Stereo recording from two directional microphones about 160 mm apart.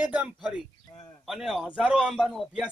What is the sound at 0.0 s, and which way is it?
A man's voice, 10° right (ahead or behind).